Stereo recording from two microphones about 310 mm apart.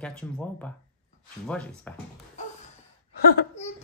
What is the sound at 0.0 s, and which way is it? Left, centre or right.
Speech, centre.